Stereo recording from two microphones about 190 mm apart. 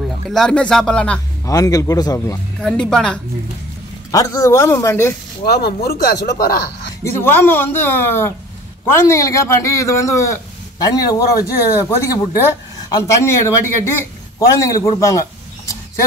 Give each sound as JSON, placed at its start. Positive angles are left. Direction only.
{"t": 0.3, "sound": "speech", "side_deg": 5}
{"t": 1.5, "sound": "a man's voice", "side_deg": 15}
{"t": 2.6, "sound": "speech", "side_deg": 5}
{"t": 4.1, "sound": "a man's voice", "side_deg": 15}
{"t": 5.4, "sound": "speech", "side_deg": 55}
{"t": 7.0, "sound": "a man's voice", "side_deg": 10}
{"t": 14.6, "sound": "a man's voice", "side_deg": 15}